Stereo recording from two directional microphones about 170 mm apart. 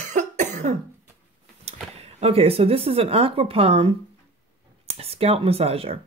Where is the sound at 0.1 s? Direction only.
45° right (ahead or behind).